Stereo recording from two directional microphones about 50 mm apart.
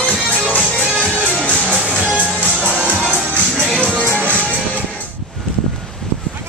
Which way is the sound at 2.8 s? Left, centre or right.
Left.